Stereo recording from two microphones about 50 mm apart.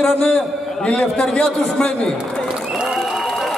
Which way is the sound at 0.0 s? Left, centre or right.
Left.